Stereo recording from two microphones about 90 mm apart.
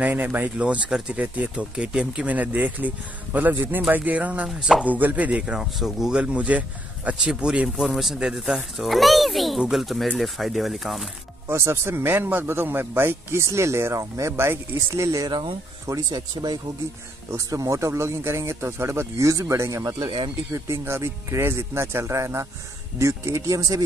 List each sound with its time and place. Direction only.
0.0 s a man's voice: 20° right (ahead or behind)
4.5 s speech: 5° right (ahead or behind)
4.8 s speech: 20° right (ahead or behind); by 11.1 s centre (ahead or behind)
11.4 s a man's voice: 30° right (ahead or behind)
16.1 s speech: 55° right (ahead or behind)
17.3 s speech: 35° right (ahead or behind)